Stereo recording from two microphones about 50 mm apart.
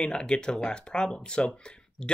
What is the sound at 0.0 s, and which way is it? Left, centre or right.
Speech, centre.